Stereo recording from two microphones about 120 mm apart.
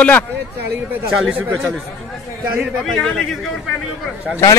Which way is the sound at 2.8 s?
5° left (ahead or behind).